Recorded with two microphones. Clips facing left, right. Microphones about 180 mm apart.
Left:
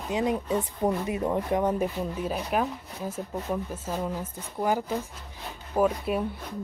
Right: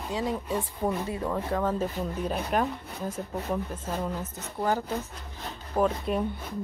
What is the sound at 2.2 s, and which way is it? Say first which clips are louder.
Speech: right 1 dB; 5° left (ahead or behind).